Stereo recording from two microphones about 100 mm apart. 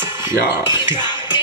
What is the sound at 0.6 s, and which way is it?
Speech, 45° left (ahead or behind).